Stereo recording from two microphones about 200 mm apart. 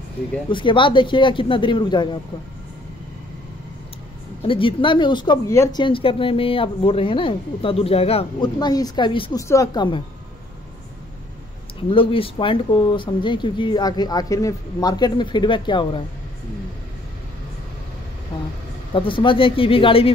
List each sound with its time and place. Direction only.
0.5 s speech: 25° left (ahead or behind)
4.4 s speech: 25° left (ahead or behind)
11.9 s speech: 25° left (ahead or behind)
18.9 s speech: 25° left (ahead or behind)